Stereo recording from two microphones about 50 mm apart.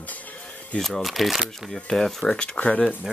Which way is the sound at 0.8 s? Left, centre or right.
Centre.